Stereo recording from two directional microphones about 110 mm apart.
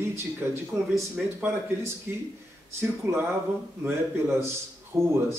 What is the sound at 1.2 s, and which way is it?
Speech, 5° right (ahead or behind).